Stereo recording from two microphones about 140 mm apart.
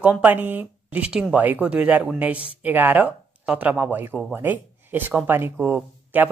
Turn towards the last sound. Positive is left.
turn(degrees=-15)  # may be behind; listen again after turning